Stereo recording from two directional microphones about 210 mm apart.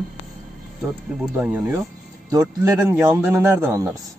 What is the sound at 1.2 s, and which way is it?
Speech, 10° right (ahead or behind).